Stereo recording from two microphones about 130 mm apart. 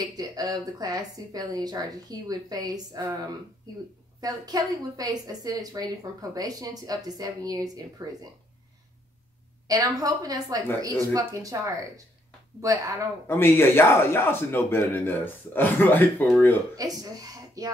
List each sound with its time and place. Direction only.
0.0 s a woman's voice: 30° right (ahead or behind)
9.7 s a woman's voice: 30° right (ahead or behind)
13.3 s speech: 15° left (ahead or behind)
16.7 s speech: 30° right (ahead or behind)